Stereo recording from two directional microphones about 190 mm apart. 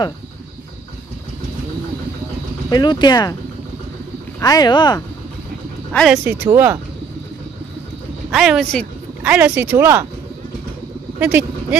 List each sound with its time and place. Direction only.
2.7 s speech: 20° left (ahead or behind)
4.4 s speech: 20° left (ahead or behind)
5.9 s speech: 5° left (ahead or behind)
6.1 s speech: 15° right (ahead or behind)
8.3 s speech: centre (ahead or behind)
11.1 s speech: 10° right (ahead or behind)